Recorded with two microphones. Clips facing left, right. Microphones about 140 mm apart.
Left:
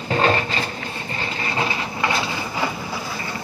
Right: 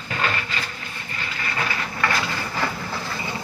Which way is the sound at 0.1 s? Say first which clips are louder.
Left 7 dB; 35° left (ahead or behind).